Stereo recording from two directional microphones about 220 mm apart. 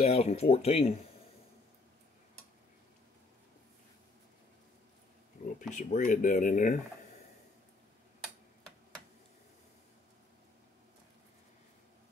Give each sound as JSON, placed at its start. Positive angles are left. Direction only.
{"t": 0.0, "sound": "speech", "side_deg": 30}
{"t": 5.4, "sound": "a sound", "side_deg": 35}
{"t": 5.8, "sound": "speech", "side_deg": 35}